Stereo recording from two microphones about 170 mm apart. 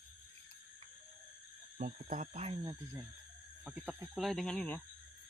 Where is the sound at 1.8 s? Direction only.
50° right (ahead or behind).